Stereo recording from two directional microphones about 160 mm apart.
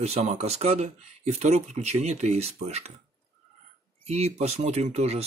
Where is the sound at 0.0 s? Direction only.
40° right (ahead or behind).